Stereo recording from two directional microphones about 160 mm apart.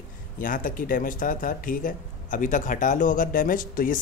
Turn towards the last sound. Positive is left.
turn(degrees=60)  # may be behind; listen again after turning